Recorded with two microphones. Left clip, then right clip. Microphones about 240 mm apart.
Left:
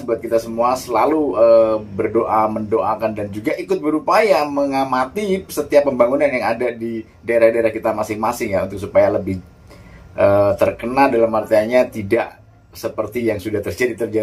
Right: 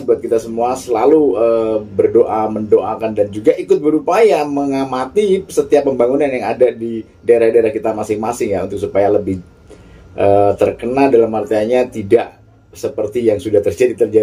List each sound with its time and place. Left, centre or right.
0.3 s speech: centre
10.1 s speech: centre